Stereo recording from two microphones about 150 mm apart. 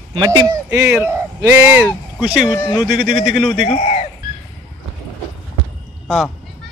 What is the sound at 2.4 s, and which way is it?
Speech, 30° left (ahead or behind).